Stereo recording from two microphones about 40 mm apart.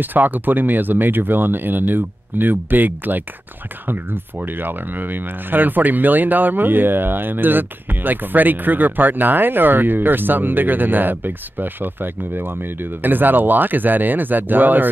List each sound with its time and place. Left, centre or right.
0.0 s speech: right